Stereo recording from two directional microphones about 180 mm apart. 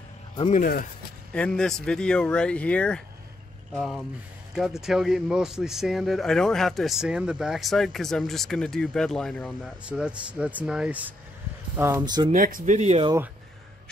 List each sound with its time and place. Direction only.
0.5 s speech: 50° left (ahead or behind)
1.3 s speech: 5° left (ahead or behind)
9.8 s speech: 5° right (ahead or behind)
12.0 s speech: 25° right (ahead or behind)
12.3 s speech: 50° right (ahead or behind)